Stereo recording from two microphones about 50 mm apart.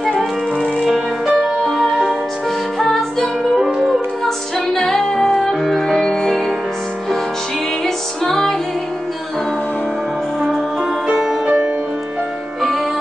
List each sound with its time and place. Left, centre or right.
0.0 s music: centre
3.6 s music: centre
4.2 s music: centre
7.8 s music: centre
10.4 s music: centre
11.4 s music: right